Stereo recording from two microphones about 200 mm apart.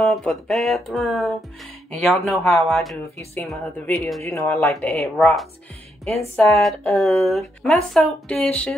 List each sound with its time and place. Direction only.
0.0 s music: centre (ahead or behind)
4.2 s speech: 15° left (ahead or behind)
6.3 s music: centre (ahead or behind)